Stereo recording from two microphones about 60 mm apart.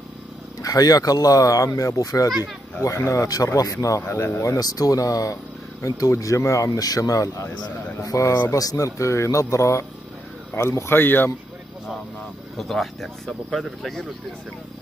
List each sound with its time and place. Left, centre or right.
0.6 s speech: left
2.8 s speech: left
4.4 s speech: left
10.5 s speech: left
11.0 s speech: left
12.5 s speech: centre